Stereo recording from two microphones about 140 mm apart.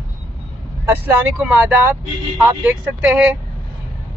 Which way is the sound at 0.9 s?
15° right (ahead or behind).